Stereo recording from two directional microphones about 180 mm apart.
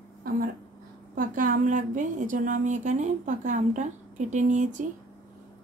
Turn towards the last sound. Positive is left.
turn(degrees=-45)  # may be behind; listen again after turning